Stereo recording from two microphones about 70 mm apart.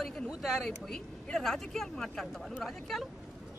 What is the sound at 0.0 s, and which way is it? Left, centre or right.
Speech, centre.